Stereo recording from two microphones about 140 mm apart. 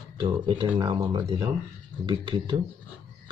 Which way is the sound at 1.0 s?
25° right (ahead or behind).